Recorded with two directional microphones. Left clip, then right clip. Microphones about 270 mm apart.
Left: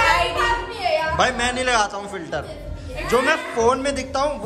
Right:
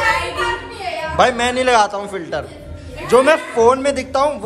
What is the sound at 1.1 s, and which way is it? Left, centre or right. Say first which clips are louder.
A man's voice: right 5 dB; centre.